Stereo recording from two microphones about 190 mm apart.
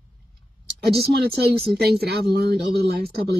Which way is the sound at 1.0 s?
55° right (ahead or behind).